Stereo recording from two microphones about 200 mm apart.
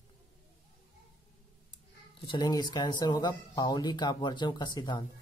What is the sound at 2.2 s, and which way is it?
Speech, 20° left (ahead or behind).